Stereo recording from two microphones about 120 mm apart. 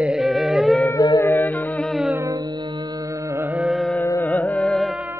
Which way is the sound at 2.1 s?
30° right (ahead or behind).